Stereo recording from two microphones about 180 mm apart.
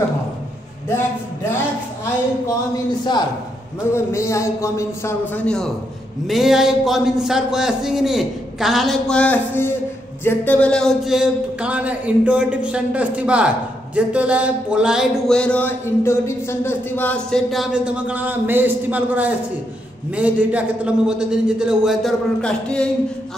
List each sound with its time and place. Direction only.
3.9 s a man's voice: 15° left (ahead or behind)